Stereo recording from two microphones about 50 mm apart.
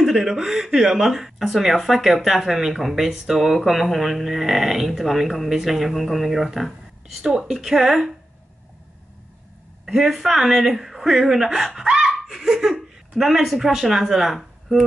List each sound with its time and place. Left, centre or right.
0.0 s speech: centre
9.8 s speech: centre
12.1 s laughter: centre
13.2 s speech: centre